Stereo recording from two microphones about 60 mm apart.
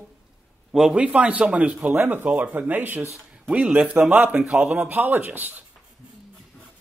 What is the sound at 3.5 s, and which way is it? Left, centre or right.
A man's voice, right.